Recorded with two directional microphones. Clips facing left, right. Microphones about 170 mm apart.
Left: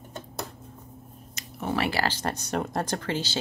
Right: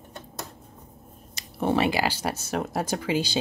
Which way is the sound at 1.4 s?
30° right (ahead or behind).